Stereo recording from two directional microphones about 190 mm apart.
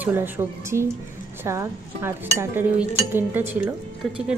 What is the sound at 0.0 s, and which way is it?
Speech, 10° right (ahead or behind).